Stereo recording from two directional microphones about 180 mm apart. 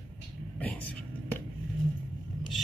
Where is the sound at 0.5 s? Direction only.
10° left (ahead or behind).